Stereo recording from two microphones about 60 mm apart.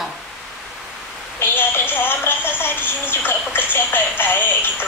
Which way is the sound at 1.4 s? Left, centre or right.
Left.